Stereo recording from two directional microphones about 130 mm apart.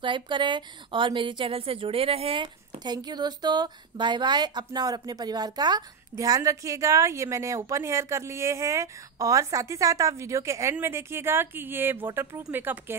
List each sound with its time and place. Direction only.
0.0 s a woman's voice: 40° right (ahead or behind); by 12.9 s 15° right (ahead or behind)